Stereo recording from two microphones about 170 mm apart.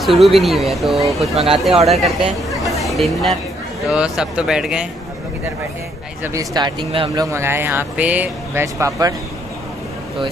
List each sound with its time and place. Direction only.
0.0 s speech: centre (ahead or behind)
1.3 s speech: 35° right (ahead or behind)
1.9 s speech: centre (ahead or behind)
6.2 s speech: 20° right (ahead or behind)
7.2 s speech: 15° right (ahead or behind)